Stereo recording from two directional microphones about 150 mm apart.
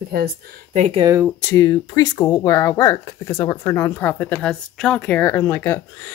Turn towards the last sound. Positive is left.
turn(degrees=15)  # may be behind; listen again after turning